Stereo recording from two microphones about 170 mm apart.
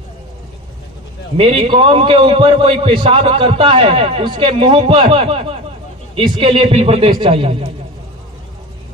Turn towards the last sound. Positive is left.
turn(degrees=-30)  # may be behind; listen again after turning